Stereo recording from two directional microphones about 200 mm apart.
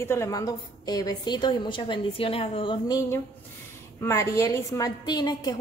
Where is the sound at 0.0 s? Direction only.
15° left (ahead or behind).